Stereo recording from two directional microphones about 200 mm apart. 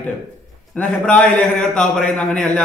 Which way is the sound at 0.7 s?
5° left (ahead or behind).